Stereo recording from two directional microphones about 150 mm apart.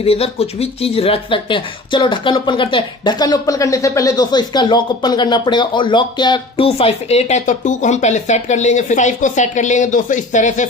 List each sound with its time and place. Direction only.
0.0 s speech: 40° left (ahead or behind)